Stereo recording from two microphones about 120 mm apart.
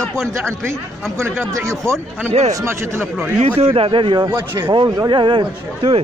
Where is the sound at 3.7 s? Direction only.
45° right (ahead or behind).